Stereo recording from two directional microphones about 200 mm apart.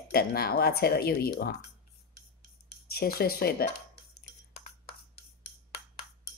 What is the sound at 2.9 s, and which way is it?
Speech, 50° left (ahead or behind).